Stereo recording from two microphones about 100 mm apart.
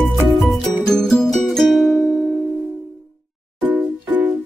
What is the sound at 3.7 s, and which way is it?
Music, 15° right (ahead or behind).